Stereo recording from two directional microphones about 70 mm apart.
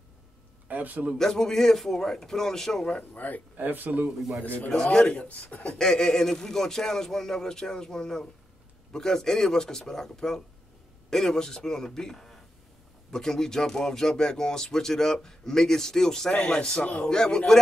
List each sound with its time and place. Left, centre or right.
0.7 s speech: right
1.1 s speech: centre
3.0 s speech: left
3.5 s speech: right
4.6 s speech: centre